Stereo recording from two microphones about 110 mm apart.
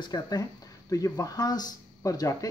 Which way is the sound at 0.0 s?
35° left (ahead or behind).